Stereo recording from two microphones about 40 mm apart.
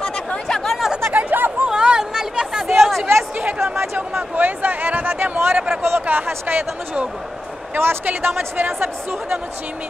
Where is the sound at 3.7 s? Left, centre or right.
Right.